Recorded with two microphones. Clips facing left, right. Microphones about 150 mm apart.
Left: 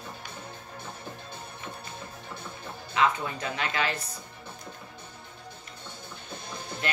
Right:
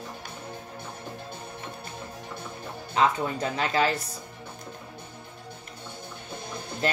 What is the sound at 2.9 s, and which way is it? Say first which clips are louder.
Speech: right 2 dB; 35° right (ahead or behind).